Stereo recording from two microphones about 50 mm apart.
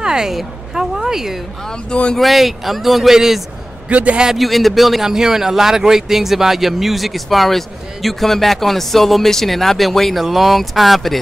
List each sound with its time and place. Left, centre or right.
0.0 s speech: centre
1.7 s speech: centre
2.1 s a man's voice: centre
3.9 s a man's voice: right
4.4 s a man's voice: centre